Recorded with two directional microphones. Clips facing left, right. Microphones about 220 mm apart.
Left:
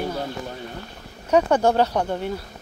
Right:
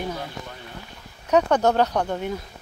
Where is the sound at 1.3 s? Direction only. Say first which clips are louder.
Left 1 dB; 10° left (ahead or behind).